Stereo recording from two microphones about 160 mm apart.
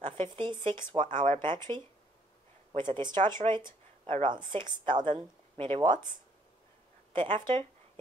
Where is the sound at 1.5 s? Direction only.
30° right (ahead or behind).